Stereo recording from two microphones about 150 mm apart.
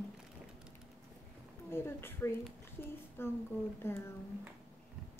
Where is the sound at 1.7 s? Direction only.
15° left (ahead or behind).